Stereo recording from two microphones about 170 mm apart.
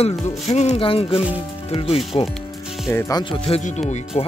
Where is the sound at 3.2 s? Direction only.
30° left (ahead or behind).